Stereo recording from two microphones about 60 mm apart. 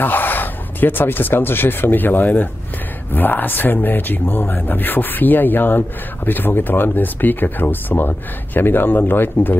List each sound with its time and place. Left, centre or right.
0.0 s speech: left